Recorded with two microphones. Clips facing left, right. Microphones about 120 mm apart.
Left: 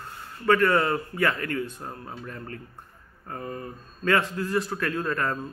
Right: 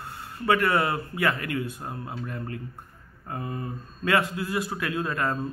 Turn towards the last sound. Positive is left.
turn(degrees=-15)  # may be behind; listen again after turning